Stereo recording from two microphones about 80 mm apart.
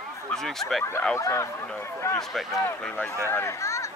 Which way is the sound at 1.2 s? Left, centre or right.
Left.